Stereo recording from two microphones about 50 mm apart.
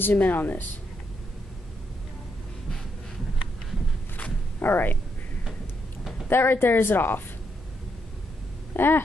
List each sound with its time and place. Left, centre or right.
0.0 s speech: left
4.6 s speech: left
6.2 s speech: left
8.7 s speech: left